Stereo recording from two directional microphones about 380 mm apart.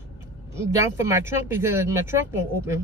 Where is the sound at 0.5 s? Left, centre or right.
Centre.